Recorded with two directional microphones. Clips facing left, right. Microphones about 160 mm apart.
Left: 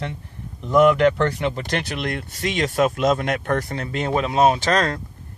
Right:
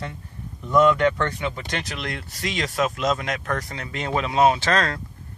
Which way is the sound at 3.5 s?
30° left (ahead or behind).